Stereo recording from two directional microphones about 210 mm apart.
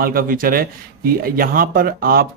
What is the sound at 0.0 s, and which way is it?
Speech, 45° right (ahead or behind).